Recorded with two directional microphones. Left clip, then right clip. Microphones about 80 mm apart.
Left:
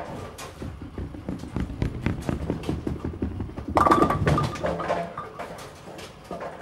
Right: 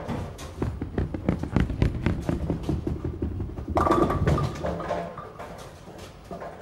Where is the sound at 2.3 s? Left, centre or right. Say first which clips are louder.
Even; left.